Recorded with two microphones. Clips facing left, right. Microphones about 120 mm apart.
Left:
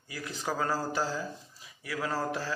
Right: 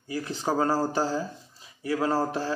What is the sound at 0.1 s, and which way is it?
Speech, 30° right (ahead or behind).